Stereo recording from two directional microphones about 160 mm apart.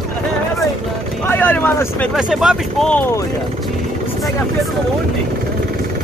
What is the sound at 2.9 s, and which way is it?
Speech, 10° left (ahead or behind).